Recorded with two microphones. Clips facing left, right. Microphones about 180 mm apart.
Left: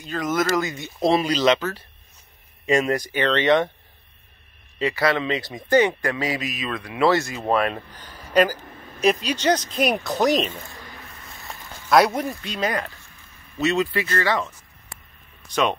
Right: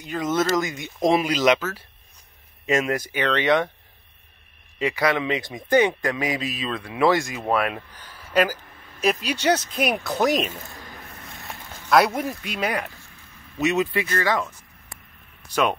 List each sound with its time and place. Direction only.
0.0 s speech: 20° right (ahead or behind); by 3.7 s centre (ahead or behind)
4.7 s speech: 15° right (ahead or behind)
6.4 s speech: 30° right (ahead or behind)
7.0 s speech: 15° right (ahead or behind)
11.2 s a sound: centre (ahead or behind)
12.2 s speech: 5° right (ahead or behind)
14.0 s speech: centre (ahead or behind)